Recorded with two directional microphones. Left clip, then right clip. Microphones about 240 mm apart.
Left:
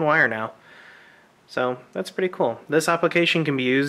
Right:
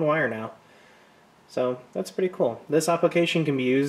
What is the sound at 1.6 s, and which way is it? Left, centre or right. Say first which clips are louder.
Speech: left 2 dB; centre.